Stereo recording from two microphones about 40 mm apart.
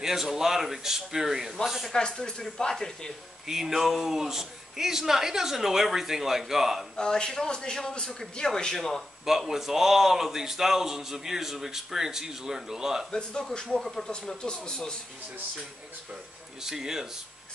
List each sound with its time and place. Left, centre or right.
0.0 s a man's voice: centre
1.9 s a man's voice: centre
3.4 s a man's voice: centre
7.0 s a man's voice: left
9.2 s a man's voice: centre
13.1 s speech: centre
16.6 s a man's voice: centre